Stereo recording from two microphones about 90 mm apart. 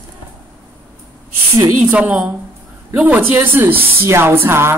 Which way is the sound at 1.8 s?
15° right (ahead or behind).